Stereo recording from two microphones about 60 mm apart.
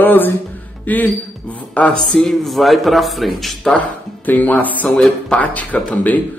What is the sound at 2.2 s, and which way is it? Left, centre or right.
A man's voice, centre.